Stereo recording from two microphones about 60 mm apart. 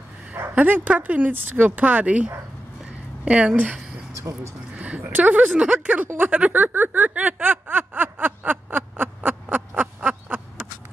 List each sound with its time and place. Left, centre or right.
0.6 s a woman's voice: right
4.7 s a sound: right
5.1 s speech: right
6.1 s speech: right
6.4 s speech: centre
6.7 s a sound: right